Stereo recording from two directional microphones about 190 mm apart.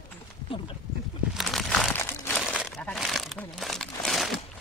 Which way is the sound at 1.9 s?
10° left (ahead or behind).